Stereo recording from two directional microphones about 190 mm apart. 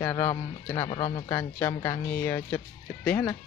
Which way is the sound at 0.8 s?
30° left (ahead or behind).